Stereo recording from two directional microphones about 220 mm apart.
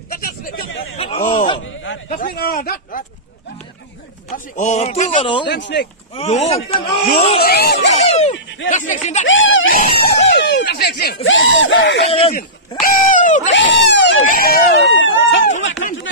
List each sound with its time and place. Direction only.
0.1 s hubbub: 40° left (ahead or behind)
0.7 s chatter: 25° left (ahead or behind)
2.0 s a man's voice: 40° left (ahead or behind)
4.3 s a man's voice: 30° left (ahead or behind)
5.5 s speech: 50° left (ahead or behind)
6.1 s a man's voice: 25° left (ahead or behind)
7.4 s speech: 45° left (ahead or behind)
8.1 s a man's voice: 30° left (ahead or behind)
9.2 s speech: 60° left (ahead or behind)
10.3 s a sound: 50° left (ahead or behind)
11.2 s speech: 60° left (ahead or behind)
12.0 s a man's voice: 25° left (ahead or behind)
12.4 s speech: 35° left (ahead or behind)
13.5 s speech: 55° left (ahead or behind)